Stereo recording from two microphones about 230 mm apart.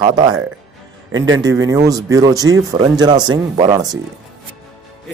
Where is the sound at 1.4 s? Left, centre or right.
Centre.